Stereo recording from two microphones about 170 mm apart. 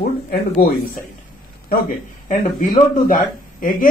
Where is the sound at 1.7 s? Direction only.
55° left (ahead or behind).